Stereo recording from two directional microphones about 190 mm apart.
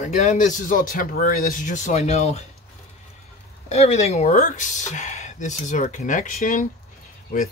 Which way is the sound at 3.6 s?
35° left (ahead or behind).